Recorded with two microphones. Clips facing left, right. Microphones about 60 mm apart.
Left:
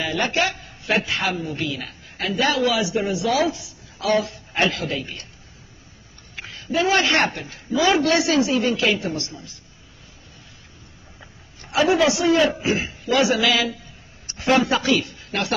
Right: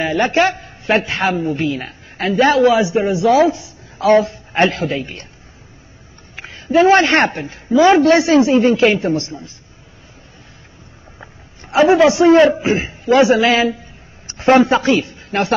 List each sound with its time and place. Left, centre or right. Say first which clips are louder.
0.0 s a man's voice: right 8 dB; right
6.3 s a man's voice: right 10 dB; right
11.7 s a man's voice: right 7 dB; right